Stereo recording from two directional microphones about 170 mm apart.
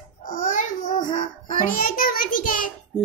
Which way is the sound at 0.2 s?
50° left (ahead or behind).